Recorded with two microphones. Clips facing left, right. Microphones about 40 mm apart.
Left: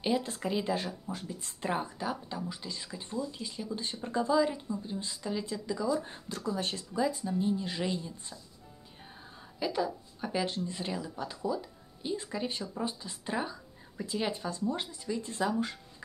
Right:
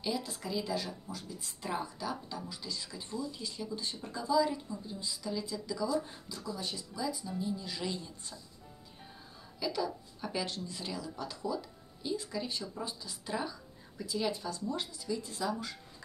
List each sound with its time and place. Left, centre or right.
0.0 s speech: left
3.7 s speech: left
6.2 s speech: left
9.6 s speech: left